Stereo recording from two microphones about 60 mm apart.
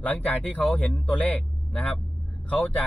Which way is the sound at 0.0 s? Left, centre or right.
Left.